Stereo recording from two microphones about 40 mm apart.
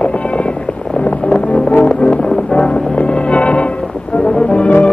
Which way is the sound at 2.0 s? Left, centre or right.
Left.